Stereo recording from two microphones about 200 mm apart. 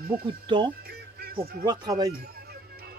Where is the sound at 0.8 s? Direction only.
50° right (ahead or behind).